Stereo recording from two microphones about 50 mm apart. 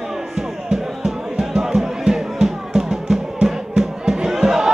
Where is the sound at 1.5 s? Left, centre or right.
Centre.